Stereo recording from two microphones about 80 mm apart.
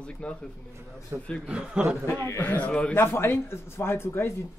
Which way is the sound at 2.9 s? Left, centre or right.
Left.